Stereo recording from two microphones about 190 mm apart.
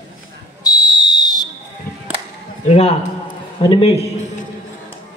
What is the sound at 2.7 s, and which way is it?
A man's voice, 35° left (ahead or behind).